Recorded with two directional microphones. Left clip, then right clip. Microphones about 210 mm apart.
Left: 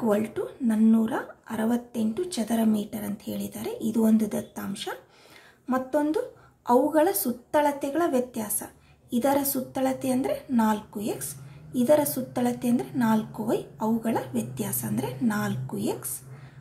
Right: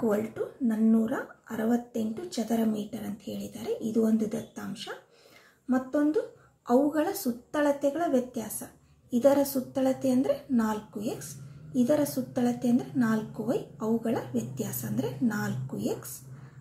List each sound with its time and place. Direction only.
0.7 s a woman's voice: 55° left (ahead or behind)